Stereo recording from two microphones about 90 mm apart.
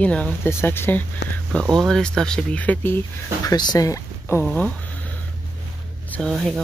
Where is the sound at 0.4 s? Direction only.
25° left (ahead or behind).